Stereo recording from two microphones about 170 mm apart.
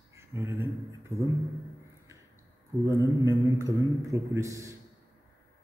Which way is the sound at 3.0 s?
20° right (ahead or behind).